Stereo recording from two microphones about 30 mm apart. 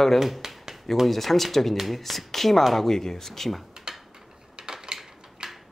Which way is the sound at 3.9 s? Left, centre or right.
Right.